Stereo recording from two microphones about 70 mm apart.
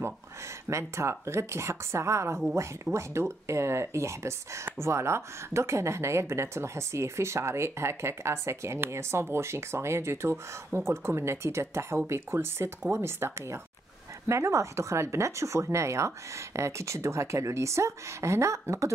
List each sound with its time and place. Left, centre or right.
0.7 s speech: right